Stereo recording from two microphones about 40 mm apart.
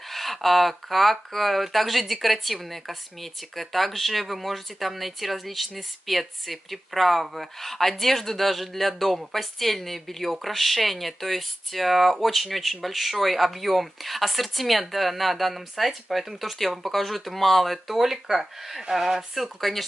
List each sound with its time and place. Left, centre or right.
0.1 s speech: centre